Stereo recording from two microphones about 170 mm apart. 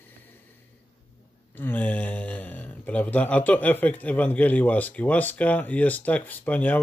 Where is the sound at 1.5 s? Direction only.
10° left (ahead or behind).